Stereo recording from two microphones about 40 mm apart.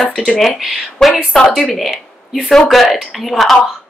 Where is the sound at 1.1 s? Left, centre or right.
Centre.